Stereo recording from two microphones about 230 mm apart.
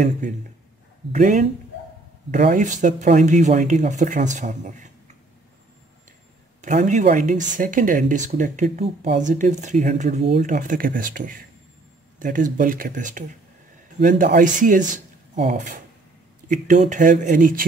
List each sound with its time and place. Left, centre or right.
1.1 s speech: right
6.6 s speech: right